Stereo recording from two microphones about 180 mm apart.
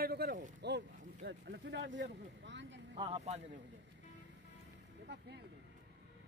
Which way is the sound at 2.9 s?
35° right (ahead or behind).